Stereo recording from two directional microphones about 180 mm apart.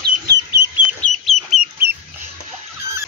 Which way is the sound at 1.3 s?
Centre (ahead or behind).